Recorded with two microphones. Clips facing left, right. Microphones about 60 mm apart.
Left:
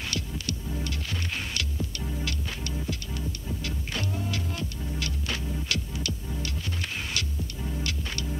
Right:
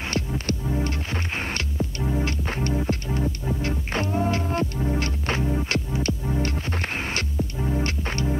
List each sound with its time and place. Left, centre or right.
0.0 s music: right